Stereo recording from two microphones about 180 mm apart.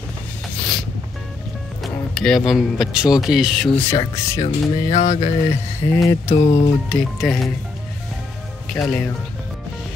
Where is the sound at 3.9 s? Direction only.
15° left (ahead or behind).